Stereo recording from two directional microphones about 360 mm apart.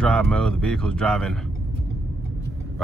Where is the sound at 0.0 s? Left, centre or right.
Centre.